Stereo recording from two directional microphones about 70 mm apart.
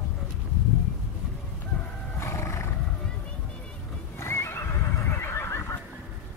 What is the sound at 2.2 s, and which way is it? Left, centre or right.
Roar, left.